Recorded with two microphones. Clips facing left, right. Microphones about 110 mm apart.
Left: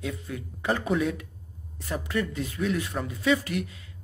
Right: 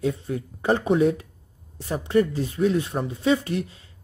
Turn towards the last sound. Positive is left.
turn(degrees=-30)  # may be behind; listen again after turning